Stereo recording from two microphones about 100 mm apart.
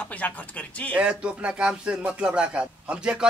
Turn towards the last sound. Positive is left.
turn(degrees=-10)  # may be behind; listen again after turning